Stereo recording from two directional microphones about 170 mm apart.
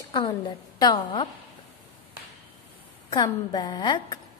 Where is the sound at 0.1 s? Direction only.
25° left (ahead or behind).